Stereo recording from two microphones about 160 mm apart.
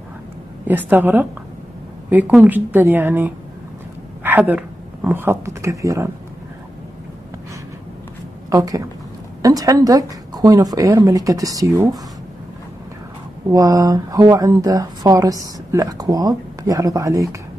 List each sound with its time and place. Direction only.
0.7 s a woman's voice: 10° right (ahead or behind)
8.5 s speech: 20° right (ahead or behind)
13.5 s speech: 20° right (ahead or behind)